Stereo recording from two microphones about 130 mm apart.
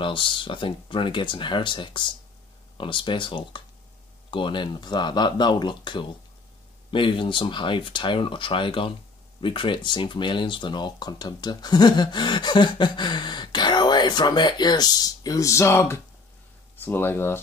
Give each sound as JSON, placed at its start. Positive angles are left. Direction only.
{"t": 0.0, "sound": "speech", "side_deg": 40}